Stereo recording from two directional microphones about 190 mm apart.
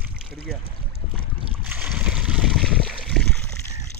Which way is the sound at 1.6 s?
5° right (ahead or behind).